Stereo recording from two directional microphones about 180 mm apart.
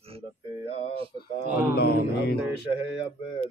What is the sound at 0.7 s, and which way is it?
Speech, 35° left (ahead or behind).